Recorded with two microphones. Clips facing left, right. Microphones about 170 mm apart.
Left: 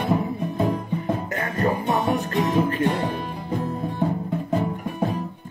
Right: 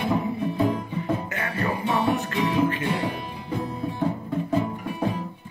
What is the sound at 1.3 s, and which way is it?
Music, 45° left (ahead or behind).